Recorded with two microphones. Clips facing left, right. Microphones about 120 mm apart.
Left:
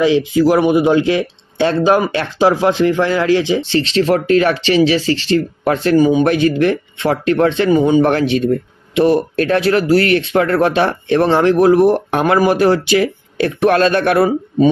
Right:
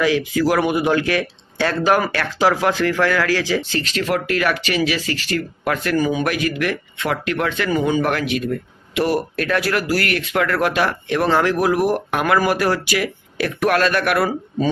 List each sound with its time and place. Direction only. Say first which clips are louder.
0.0 s speech: left 6 dB; 20° left (ahead or behind)